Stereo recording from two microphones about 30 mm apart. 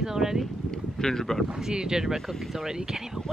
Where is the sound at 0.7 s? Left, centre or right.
Centre.